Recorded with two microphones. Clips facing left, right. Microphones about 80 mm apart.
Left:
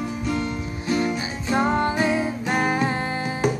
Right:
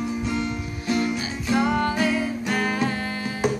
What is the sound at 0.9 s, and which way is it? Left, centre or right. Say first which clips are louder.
Music: left 1 dB; left.